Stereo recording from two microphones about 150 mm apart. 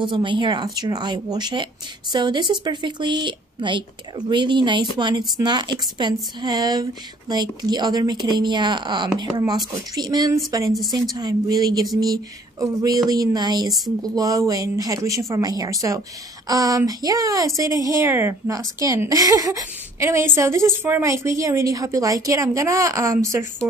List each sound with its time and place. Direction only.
0.0 s a woman's voice: 35° right (ahead or behind)
10.7 s a woman's voice: centre (ahead or behind)
11.1 s speech: 25° right (ahead or behind)